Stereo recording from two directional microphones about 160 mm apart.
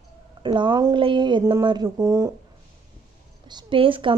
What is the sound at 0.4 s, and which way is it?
Speech, 30° right (ahead or behind).